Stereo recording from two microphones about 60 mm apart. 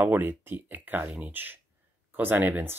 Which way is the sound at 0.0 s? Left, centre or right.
Right.